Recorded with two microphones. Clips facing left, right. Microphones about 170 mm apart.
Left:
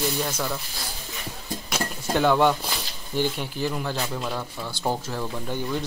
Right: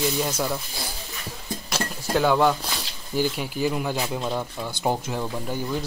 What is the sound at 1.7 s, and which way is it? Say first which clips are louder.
Speech: right 1 dB; centre (ahead or behind).